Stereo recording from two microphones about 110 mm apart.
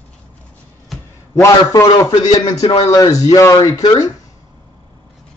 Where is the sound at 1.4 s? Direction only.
25° left (ahead or behind).